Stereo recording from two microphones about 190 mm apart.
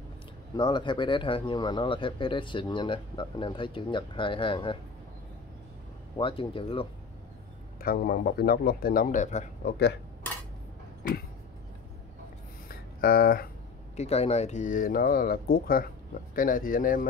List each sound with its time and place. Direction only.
0.6 s speech: 25° left (ahead or behind)
6.1 s speech: 25° left (ahead or behind)
7.8 s speech: 50° left (ahead or behind)
12.6 s a sound: 50° left (ahead or behind)
13.9 s speech: 35° left (ahead or behind)